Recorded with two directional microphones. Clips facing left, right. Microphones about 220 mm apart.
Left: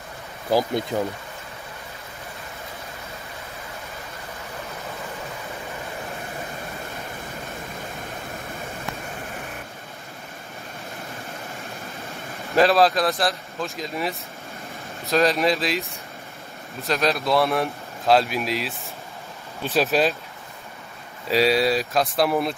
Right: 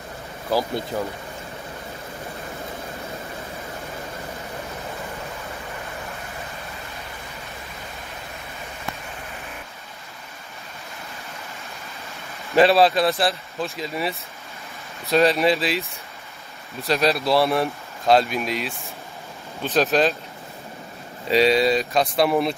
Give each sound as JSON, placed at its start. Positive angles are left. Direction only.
{"t": 0.5, "sound": "speech", "side_deg": 15}
{"t": 12.5, "sound": "speech", "side_deg": 0}
{"t": 16.8, "sound": "speech", "side_deg": 0}
{"t": 21.3, "sound": "speech", "side_deg": 0}